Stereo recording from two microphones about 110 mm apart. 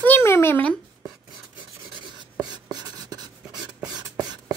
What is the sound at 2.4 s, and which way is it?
Writing, 40° right (ahead or behind).